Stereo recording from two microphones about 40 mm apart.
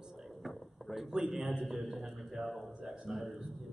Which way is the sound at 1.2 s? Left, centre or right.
Centre.